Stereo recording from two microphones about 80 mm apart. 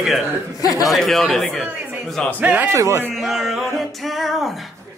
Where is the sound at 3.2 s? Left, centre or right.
Centre.